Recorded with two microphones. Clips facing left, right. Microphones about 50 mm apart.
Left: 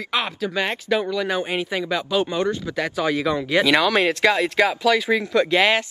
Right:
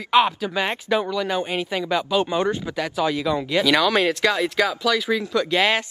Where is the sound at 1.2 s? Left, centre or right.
Centre.